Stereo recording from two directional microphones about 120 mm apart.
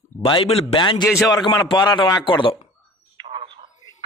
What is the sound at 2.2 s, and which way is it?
Speech, 45° left (ahead or behind).